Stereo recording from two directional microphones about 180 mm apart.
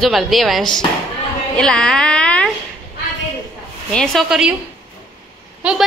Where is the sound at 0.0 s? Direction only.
Centre (ahead or behind).